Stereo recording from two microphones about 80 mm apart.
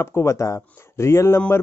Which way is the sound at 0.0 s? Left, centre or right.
Left.